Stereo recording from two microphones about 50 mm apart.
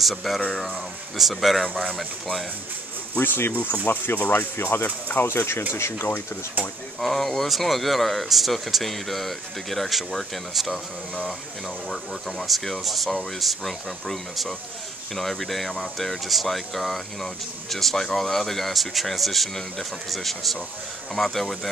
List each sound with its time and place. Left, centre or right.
0.0 s speech: centre
3.2 s speech: left
3.5 s speech: left
5.2 s speech: left
7.0 s speech: centre
11.9 s speech: centre